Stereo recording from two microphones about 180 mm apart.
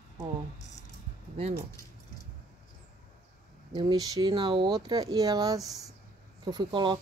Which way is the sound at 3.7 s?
25° right (ahead or behind).